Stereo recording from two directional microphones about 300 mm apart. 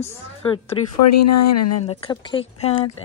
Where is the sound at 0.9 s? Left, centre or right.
Left.